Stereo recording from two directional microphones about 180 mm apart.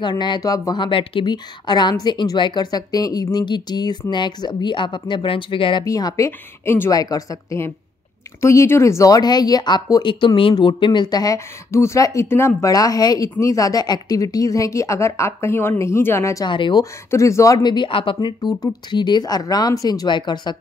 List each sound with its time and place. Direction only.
0.0 s speech: 25° left (ahead or behind)
17.1 s speech: 15° left (ahead or behind)